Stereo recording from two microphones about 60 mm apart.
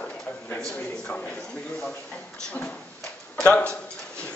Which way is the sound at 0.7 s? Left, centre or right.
Left.